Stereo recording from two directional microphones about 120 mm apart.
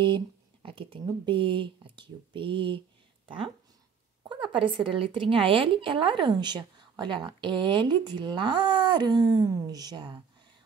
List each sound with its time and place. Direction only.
0.0 s speech: 45° right (ahead or behind)